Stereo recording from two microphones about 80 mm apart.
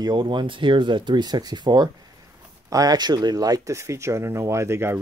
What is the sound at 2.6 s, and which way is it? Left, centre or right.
Speech, right.